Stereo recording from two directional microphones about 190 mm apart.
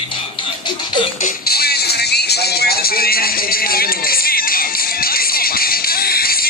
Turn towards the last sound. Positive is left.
turn(degrees=50)  # may be behind; listen again after turning